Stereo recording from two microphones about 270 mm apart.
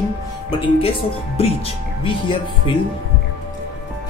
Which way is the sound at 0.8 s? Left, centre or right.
Left.